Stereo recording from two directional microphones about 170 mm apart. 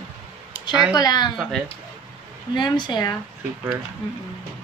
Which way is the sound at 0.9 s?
25° left (ahead or behind).